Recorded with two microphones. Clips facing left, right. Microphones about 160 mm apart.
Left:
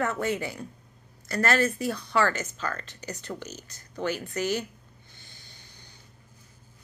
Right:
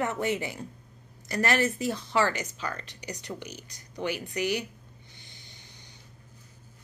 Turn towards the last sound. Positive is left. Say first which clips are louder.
# right 1 dB
turn(degrees=-20)  # may be behind; listen again after turning